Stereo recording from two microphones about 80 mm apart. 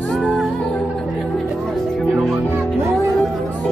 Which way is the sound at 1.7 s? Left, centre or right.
Centre.